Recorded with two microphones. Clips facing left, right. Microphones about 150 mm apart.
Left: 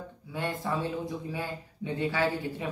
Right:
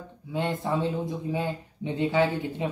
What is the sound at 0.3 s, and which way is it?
Speech, 20° right (ahead or behind).